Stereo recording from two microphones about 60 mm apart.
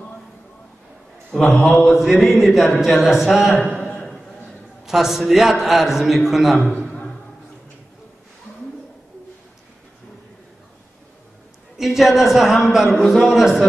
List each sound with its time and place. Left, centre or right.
1.6 s speech: centre
3.8 s a sound: centre
4.8 s a man's voice: centre
11.8 s speech: centre